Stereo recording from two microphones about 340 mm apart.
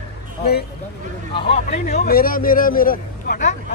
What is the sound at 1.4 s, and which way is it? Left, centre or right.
A man's voice, centre.